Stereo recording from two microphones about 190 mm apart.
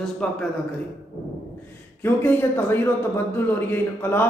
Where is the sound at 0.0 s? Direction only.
5° left (ahead or behind).